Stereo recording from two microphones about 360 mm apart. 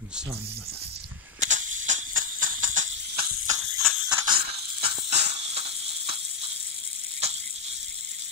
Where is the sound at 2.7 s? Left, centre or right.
Centre.